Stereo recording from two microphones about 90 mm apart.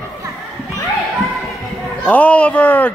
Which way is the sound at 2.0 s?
15° left (ahead or behind).